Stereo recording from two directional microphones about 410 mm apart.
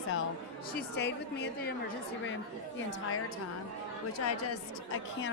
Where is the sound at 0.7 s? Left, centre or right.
Left.